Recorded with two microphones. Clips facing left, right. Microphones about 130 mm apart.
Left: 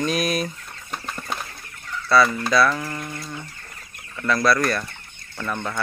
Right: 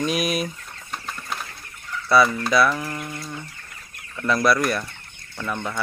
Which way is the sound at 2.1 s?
15° right (ahead or behind).